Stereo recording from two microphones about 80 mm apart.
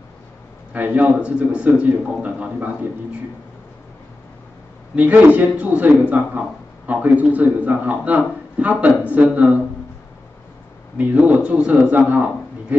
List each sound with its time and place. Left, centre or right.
0.7 s a man's voice: centre
4.9 s a man's voice: centre
11.0 s a man's voice: centre